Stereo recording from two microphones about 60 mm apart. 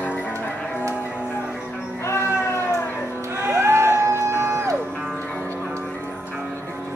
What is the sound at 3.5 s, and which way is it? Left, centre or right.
Music, right.